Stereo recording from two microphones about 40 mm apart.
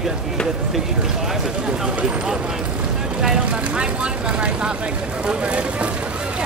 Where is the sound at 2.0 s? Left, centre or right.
Right.